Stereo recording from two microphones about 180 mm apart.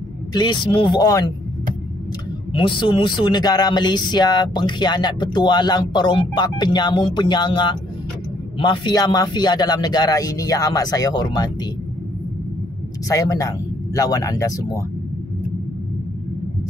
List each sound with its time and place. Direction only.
0.3 s speech: 25° left (ahead or behind)
2.5 s speech: 30° left (ahead or behind)
13.1 s speech: 20° left (ahead or behind)